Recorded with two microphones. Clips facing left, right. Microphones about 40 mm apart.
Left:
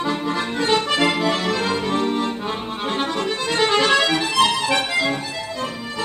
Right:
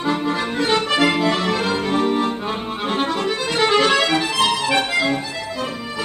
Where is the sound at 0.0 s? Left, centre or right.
Centre.